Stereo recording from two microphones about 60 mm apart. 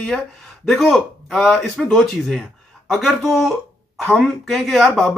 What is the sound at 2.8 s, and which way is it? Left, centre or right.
A man's voice, centre.